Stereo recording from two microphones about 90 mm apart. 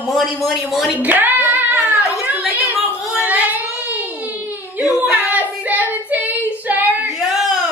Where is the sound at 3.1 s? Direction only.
15° right (ahead or behind).